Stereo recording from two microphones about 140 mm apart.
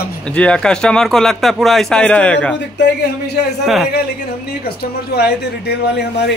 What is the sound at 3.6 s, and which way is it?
Speech, centre (ahead or behind).